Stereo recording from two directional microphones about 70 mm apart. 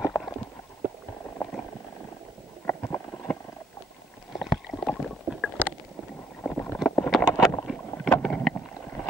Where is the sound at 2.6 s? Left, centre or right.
Left.